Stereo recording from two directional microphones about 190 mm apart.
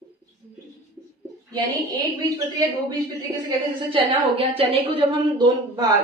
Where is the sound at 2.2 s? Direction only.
20° right (ahead or behind).